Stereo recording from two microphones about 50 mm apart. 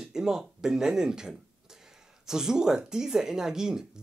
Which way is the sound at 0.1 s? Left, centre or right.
Centre.